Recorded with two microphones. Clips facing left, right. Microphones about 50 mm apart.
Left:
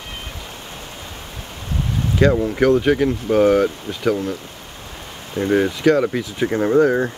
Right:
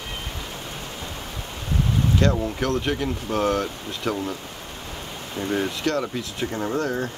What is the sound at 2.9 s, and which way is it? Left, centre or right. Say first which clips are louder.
Speech: left 9 dB; left.